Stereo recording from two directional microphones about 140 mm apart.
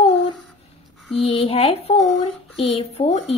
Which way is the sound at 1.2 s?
45° left (ahead or behind).